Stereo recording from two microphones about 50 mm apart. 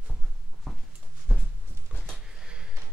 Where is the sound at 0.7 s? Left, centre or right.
Centre.